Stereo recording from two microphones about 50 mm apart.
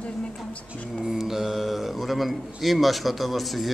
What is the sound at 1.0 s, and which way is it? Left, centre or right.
A man's voice, centre.